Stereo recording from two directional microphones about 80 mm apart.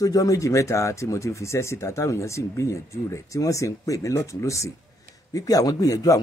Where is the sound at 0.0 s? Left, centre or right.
Left.